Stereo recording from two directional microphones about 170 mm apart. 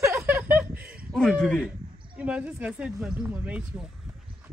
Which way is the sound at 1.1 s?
5° left (ahead or behind).